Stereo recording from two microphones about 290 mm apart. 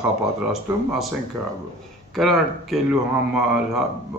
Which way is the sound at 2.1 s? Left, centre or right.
Centre.